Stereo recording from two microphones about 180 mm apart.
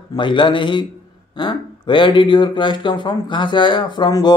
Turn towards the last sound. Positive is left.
turn(degrees=25)  # may be behind; listen again after turning